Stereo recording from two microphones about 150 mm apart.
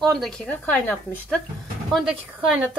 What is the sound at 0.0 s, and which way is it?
Speech, centre (ahead or behind).